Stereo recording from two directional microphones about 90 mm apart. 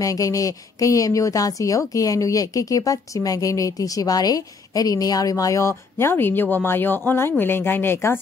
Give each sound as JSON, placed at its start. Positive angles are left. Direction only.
{"t": 0.0, "sound": "speech", "side_deg": 40}